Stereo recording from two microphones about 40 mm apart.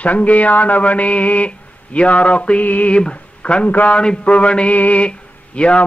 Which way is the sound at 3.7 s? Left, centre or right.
Left.